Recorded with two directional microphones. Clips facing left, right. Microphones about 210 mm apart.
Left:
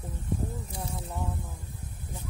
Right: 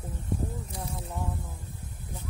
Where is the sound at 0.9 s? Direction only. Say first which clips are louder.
Even; centre (ahead or behind).